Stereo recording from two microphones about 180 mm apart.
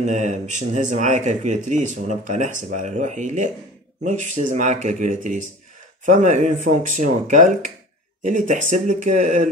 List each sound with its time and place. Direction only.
0.0 s speech: 40° right (ahead or behind)